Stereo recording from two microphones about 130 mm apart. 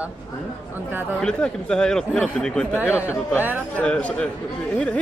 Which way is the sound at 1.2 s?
5° left (ahead or behind).